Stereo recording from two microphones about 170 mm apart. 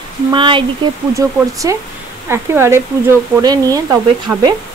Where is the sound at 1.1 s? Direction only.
20° right (ahead or behind).